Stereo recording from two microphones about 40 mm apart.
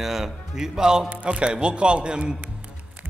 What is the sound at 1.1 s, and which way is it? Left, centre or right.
Speech, right.